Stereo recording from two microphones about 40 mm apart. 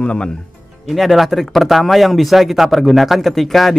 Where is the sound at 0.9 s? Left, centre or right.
Centre.